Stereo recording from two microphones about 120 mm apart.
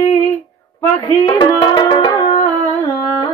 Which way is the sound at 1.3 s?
40° left (ahead or behind).